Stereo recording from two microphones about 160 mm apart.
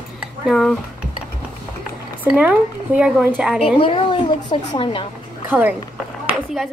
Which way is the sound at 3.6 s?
35° left (ahead or behind).